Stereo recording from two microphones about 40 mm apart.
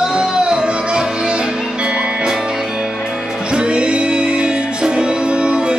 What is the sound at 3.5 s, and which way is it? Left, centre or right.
Music, right.